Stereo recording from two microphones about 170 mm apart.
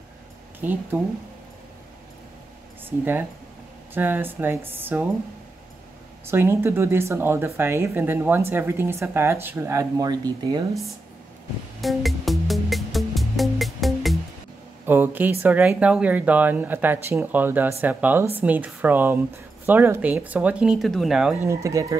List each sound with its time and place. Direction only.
2.8 s speech: 10° right (ahead or behind)
6.2 s speech: 15° right (ahead or behind)
11.8 s music: centre (ahead or behind)
14.9 s speech: 10° right (ahead or behind)
21.5 s speech: 20° right (ahead or behind)